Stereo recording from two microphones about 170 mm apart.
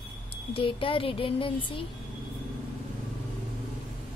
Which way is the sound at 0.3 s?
30° left (ahead or behind).